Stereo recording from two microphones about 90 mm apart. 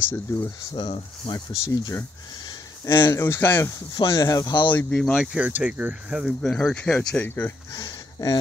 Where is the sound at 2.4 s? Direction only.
55° left (ahead or behind).